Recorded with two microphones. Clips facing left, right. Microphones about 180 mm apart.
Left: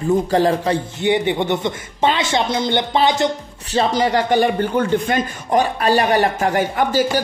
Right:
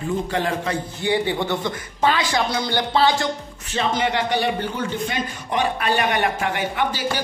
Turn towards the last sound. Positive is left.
turn(degrees=45)  # may be behind; listen again after turning